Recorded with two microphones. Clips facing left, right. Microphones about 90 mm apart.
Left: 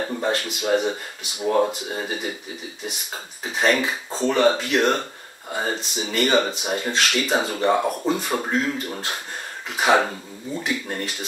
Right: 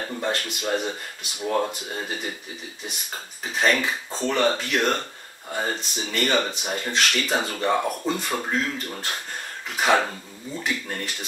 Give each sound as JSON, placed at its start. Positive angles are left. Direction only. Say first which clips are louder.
{"t": 0.0, "sound": "speech", "louder": "left 3 dB", "side_deg": 10}
{"t": 3.5, "sound": "speech", "louder": "left 2 dB", "side_deg": 5}